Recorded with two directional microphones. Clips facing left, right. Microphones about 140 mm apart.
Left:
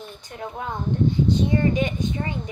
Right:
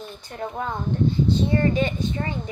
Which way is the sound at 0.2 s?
15° left (ahead or behind).